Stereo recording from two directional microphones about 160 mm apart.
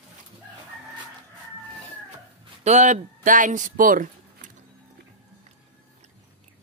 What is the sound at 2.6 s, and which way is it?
Speech, 45° right (ahead or behind).